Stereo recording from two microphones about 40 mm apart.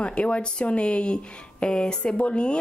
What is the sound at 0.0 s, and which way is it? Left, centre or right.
Speech, left.